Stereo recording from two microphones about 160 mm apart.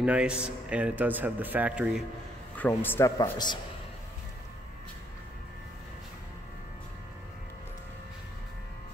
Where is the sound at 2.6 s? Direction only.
10° left (ahead or behind).